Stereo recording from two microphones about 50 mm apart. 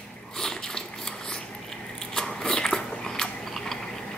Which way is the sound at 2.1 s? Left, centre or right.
Centre.